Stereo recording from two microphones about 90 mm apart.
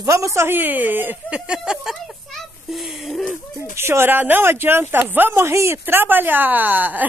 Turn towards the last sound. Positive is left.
turn(degrees=-20)  # may be behind; listen again after turning